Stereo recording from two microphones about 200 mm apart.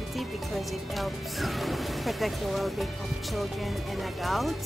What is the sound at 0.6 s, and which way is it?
Speech, centre (ahead or behind).